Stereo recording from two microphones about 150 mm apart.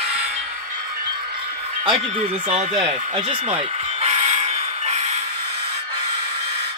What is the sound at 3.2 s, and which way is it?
Vehicle, 45° right (ahead or behind).